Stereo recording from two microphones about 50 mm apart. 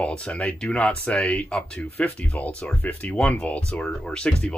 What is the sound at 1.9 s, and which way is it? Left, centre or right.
Speech, left.